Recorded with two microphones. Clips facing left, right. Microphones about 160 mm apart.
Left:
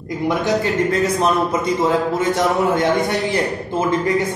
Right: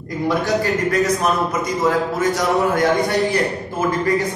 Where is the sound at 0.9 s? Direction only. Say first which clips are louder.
Left 1 dB; 30° left (ahead or behind).